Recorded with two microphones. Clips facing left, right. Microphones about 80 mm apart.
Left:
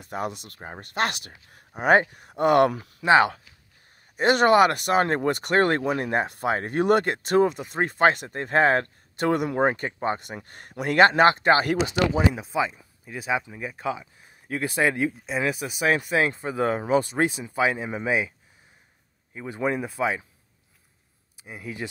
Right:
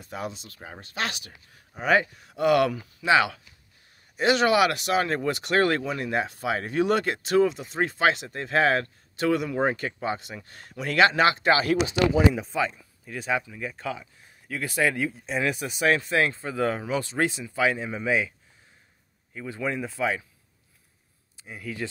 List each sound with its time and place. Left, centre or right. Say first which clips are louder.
0.0 s speech: left 4 dB; left
2.7 s speech: left 1 dB; left
3.1 s speech: left 3 dB; left
12.4 s speech: left 1 dB; centre; by 15.1 s left
15.2 s speech: left 1 dB; centre; by 18.3 s left
19.3 s speech: left 3 dB; left
21.5 s speech: even; left